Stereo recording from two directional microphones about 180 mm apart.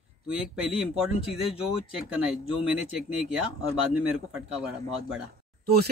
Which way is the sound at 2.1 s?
5° right (ahead or behind).